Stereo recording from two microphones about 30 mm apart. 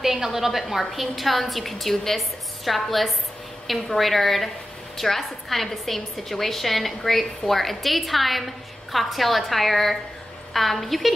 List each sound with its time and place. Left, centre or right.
0.0 s a woman's voice: centre